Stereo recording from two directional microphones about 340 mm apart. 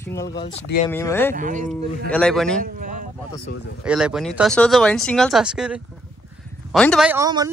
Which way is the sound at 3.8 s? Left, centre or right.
Centre.